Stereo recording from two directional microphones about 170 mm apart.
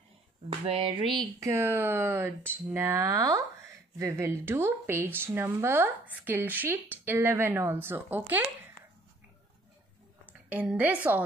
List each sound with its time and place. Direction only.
0.5 s speech: 35° right (ahead or behind)
1.1 s speech: 20° right (ahead or behind)
10.5 s speech: 10° right (ahead or behind)